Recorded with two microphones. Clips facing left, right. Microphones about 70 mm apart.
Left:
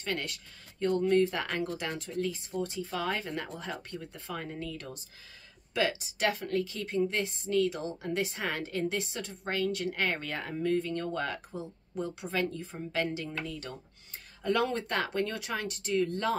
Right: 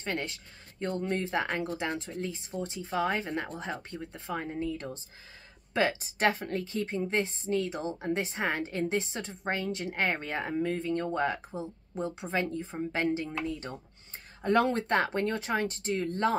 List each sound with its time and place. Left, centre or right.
0.0 s a woman's voice: right